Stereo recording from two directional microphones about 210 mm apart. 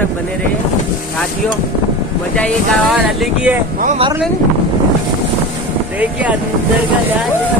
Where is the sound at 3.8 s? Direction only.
35° right (ahead or behind).